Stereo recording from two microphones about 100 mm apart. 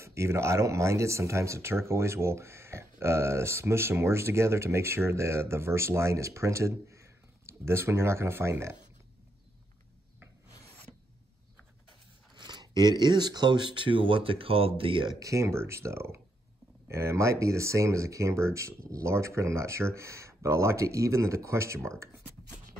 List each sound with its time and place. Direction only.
0.0 s speech: 30° right (ahead or behind)
12.4 s speech: 45° right (ahead or behind)
15.1 s speech: 30° right (ahead or behind)